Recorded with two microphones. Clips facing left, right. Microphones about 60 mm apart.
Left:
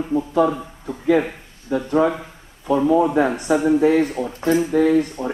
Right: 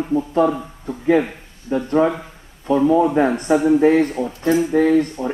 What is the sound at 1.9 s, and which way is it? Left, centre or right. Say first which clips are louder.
Speech: right 1 dB; centre.